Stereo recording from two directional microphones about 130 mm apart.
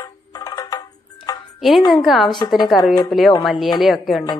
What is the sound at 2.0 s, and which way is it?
Speech, centre (ahead or behind).